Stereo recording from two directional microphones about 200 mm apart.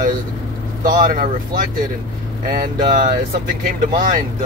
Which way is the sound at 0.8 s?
40° right (ahead or behind).